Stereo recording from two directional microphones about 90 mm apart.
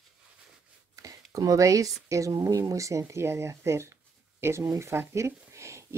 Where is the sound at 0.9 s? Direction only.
40° right (ahead or behind).